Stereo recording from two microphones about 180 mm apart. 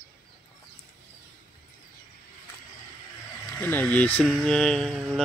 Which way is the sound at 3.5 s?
10° left (ahead or behind).